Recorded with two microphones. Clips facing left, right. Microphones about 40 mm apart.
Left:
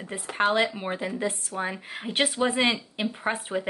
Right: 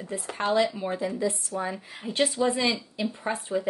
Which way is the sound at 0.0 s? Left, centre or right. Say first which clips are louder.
Right 1 dB; left.